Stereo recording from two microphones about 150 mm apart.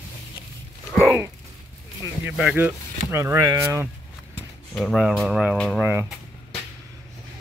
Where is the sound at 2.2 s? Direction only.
10° right (ahead or behind).